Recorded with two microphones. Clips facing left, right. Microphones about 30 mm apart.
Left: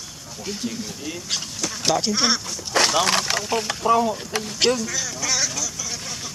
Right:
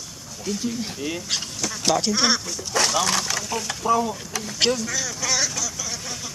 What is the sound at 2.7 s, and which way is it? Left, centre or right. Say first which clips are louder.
Speech: left 3 dB; left.